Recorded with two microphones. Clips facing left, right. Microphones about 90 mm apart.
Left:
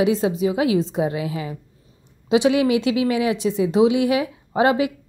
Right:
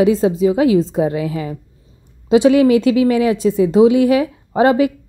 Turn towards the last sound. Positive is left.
turn(degrees=-40)  # may be behind; listen again after turning